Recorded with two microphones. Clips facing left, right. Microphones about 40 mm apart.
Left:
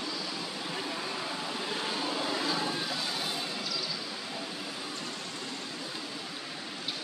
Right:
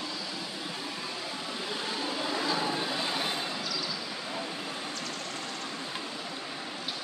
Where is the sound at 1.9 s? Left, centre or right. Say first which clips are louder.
Right 1 dB; centre.